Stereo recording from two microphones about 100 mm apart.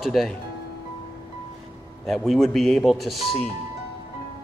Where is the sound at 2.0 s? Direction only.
Centre (ahead or behind).